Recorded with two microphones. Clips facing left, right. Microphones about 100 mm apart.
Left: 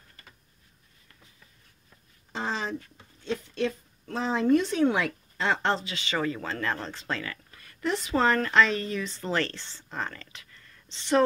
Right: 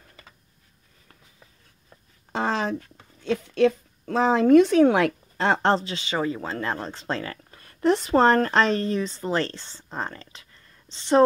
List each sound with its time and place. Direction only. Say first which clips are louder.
2.3 s a sound: right 6 dB; 60° right (ahead or behind)
3.3 s a woman's voice: right 8 dB; 65° right (ahead or behind); by 6.0 s 35° right (ahead or behind)
6.0 s speech: left 1 dB; 20° right (ahead or behind)